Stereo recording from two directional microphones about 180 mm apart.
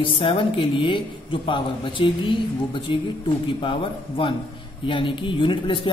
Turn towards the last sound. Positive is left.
turn(degrees=30)  # may be behind; listen again after turning